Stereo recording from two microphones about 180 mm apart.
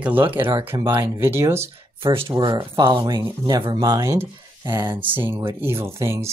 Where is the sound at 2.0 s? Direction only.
25° right (ahead or behind).